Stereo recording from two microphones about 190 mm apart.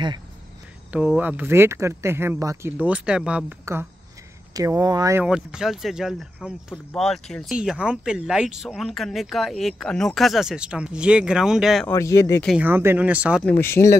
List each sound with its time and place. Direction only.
0.9 s speech: 5° right (ahead or behind)
5.2 s speech: 5° right (ahead or behind)
11.9 s speech: 15° left (ahead or behind)
12.4 s speech: 10° right (ahead or behind)
13.4 s speech: 10° left (ahead or behind)